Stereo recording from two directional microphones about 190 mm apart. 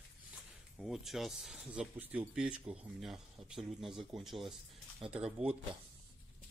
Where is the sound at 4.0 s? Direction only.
20° right (ahead or behind).